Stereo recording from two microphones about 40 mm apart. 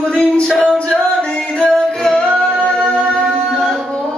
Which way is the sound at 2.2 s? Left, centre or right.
Left.